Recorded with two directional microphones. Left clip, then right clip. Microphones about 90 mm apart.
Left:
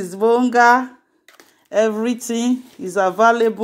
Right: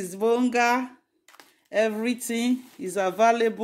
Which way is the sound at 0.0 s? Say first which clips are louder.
Left 7 dB; 15° left (ahead or behind).